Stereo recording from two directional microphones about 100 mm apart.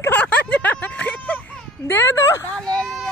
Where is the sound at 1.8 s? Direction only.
25° left (ahead or behind).